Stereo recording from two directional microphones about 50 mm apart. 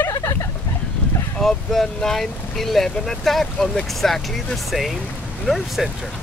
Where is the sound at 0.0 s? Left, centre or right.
Left.